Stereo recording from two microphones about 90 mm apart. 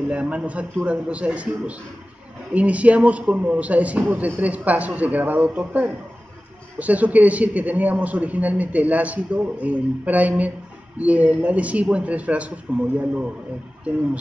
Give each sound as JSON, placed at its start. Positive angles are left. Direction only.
{"t": 0.1, "sound": "a man's voice", "side_deg": -15}